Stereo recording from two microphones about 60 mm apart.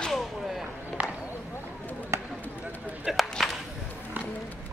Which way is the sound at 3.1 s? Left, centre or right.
Centre.